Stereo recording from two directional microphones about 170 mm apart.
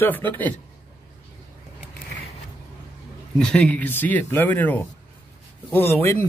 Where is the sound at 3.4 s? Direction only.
5° left (ahead or behind).